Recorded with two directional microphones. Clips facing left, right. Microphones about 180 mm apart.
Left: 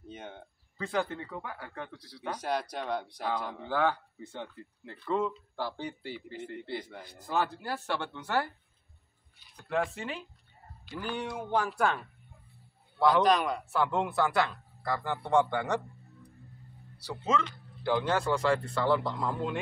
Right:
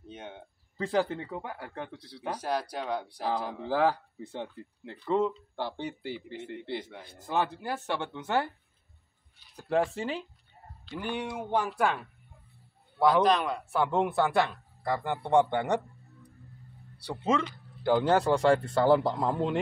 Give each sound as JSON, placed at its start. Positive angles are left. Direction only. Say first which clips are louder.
{"t": 0.1, "sound": "a sound", "louder": "right 1 dB", "side_deg": 0}
{"t": 0.7, "sound": "a man's voice", "louder": "right 4 dB", "side_deg": -35}
{"t": 2.8, "sound": "speech", "louder": "right 1 dB", "side_deg": -5}
{"t": 3.1, "sound": "a man's voice", "louder": "right 2 dB", "side_deg": -30}
{"t": 4.9, "sound": "speech", "louder": "right 3 dB", "side_deg": -20}
{"t": 9.7, "sound": "a man's voice", "louder": "right 4 dB", "side_deg": -30}
{"t": 11.1, "sound": "speech", "louder": "right 1 dB", "side_deg": -5}
{"t": 13.7, "sound": "speech", "louder": "right 4 dB", "side_deg": -15}
{"t": 17.2, "sound": "speech", "louder": "right 2 dB", "side_deg": -10}
{"t": 17.8, "sound": "a man's voice", "louder": "right 4 dB", "side_deg": -35}